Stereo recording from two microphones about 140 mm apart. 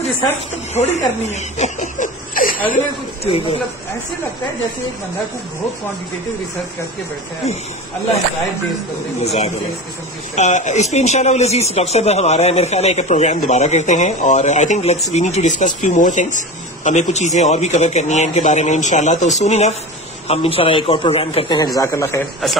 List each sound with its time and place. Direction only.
0.7 s speech: 55° left (ahead or behind); by 2.6 s 80° left
3.3 s speech: 40° left (ahead or behind)
9.2 s speech: 50° left (ahead or behind)
20.2 s speech: 40° left (ahead or behind)
21.5 s speech: 25° left (ahead or behind)